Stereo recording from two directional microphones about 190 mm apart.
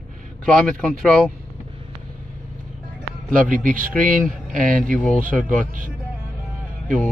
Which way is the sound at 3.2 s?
45° right (ahead or behind).